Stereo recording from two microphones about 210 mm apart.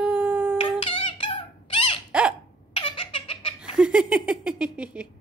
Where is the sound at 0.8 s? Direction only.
25° left (ahead or behind).